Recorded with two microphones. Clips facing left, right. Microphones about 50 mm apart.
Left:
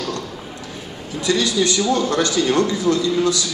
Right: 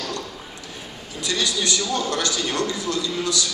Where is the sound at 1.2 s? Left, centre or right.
Left.